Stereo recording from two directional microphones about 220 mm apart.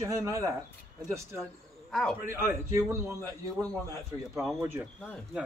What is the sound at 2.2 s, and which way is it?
Speech, 10° right (ahead or behind).